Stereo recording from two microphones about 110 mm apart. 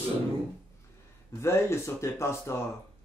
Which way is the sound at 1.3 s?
25° left (ahead or behind).